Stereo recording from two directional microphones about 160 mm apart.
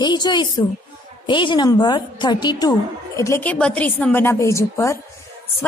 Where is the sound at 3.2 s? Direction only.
15° left (ahead or behind).